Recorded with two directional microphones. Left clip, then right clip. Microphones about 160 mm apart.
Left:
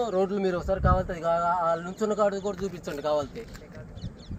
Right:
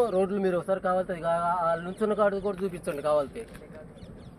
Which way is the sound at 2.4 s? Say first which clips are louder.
Right 1 dB; 15° right (ahead or behind).